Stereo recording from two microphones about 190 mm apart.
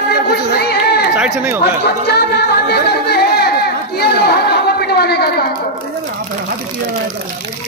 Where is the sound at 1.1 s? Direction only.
5° right (ahead or behind).